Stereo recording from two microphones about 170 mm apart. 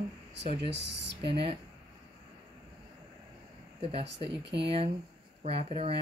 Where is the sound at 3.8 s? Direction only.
35° right (ahead or behind).